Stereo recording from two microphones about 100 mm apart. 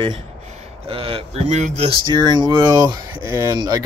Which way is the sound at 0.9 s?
70° right (ahead or behind).